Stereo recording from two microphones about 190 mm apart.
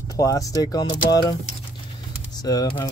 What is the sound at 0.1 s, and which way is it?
Speech, 20° left (ahead or behind).